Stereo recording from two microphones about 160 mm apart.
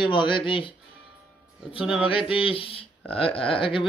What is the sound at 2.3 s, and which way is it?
Speech, 35° left (ahead or behind).